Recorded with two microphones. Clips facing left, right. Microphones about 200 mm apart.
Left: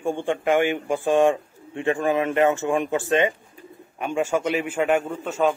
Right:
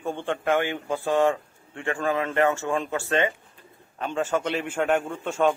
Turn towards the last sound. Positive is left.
turn(degrees=5)  # may be behind; listen again after turning